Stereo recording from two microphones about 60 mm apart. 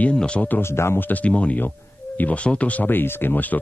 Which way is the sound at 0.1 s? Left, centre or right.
Centre.